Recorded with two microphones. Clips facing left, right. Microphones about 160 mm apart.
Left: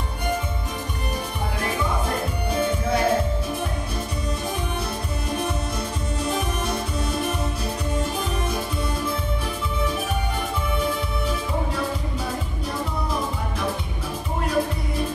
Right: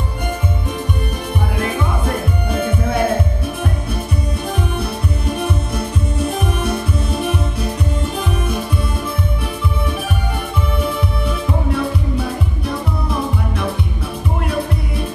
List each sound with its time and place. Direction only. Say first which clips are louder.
2.5 s music: right 3 dB; 55° right (ahead or behind)
5.8 s music: right 6 dB; 60° right (ahead or behind)
10.8 s music: right 5 dB; 60° right (ahead or behind)